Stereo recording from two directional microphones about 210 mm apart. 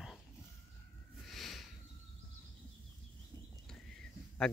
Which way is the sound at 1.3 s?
Centre (ahead or behind).